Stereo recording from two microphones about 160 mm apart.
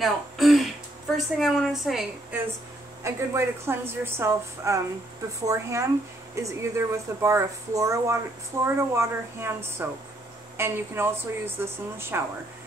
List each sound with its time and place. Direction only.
0.0 s a woman's voice: centre (ahead or behind)
3.0 s a woman's voice: 15° right (ahead or behind)